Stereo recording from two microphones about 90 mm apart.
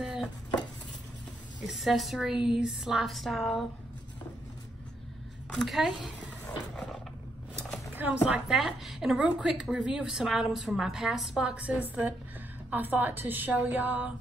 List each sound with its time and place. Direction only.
0.0 s chopping: 5° right (ahead or behind)
1.8 s a woman's voice: centre (ahead or behind)
5.5 s a woman's voice: centre (ahead or behind)
7.9 s a sound: 20° right (ahead or behind)
8.3 s a woman's voice: 5° right (ahead or behind)